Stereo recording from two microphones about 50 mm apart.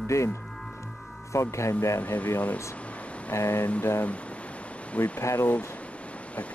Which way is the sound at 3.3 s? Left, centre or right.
Left.